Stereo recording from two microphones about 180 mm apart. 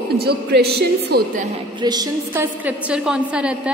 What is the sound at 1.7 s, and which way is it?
Speech, 20° right (ahead or behind).